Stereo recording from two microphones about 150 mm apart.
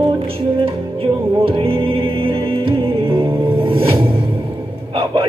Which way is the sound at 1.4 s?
35° right (ahead or behind).